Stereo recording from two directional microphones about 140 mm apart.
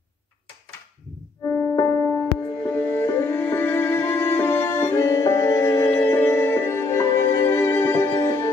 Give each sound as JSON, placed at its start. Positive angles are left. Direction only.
{"t": 1.8, "sound": "music", "side_deg": 20}